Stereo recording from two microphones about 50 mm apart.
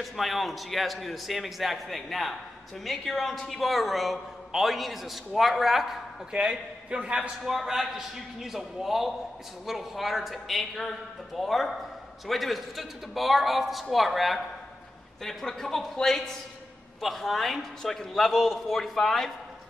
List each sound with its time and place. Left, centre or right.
0.0 s a man's voice: centre
6.3 s a man's voice: centre
7.4 s a man's voice: centre